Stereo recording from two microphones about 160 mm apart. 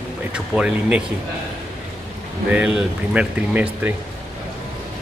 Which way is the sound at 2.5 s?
5° right (ahead or behind).